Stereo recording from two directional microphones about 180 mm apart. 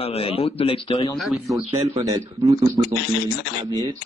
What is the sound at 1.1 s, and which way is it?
Speech, centre (ahead or behind).